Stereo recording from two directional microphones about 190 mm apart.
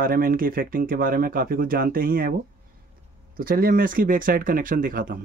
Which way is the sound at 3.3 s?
50° right (ahead or behind).